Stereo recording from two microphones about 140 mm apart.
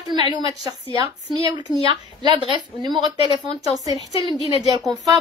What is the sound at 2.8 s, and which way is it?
A woman's voice, 30° right (ahead or behind).